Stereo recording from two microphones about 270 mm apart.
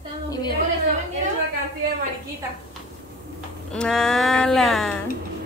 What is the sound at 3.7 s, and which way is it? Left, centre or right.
Speech, centre.